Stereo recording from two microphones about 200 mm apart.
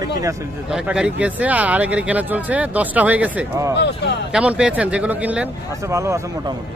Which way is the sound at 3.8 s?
60° left (ahead or behind).